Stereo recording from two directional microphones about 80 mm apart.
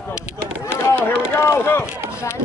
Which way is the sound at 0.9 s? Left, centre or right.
Left.